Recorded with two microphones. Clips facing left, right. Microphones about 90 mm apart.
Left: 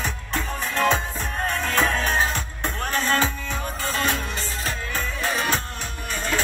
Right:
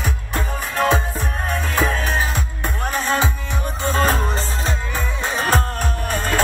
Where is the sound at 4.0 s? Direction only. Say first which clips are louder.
Right 7 dB; 40° right (ahead or behind).